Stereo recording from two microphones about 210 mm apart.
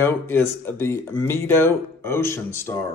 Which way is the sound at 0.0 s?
10° left (ahead or behind).